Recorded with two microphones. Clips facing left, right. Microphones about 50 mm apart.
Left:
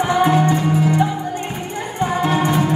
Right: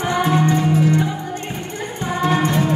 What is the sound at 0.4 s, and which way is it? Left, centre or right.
Music, centre.